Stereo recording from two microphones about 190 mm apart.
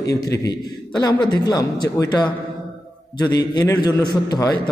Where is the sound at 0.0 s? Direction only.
15° left (ahead or behind).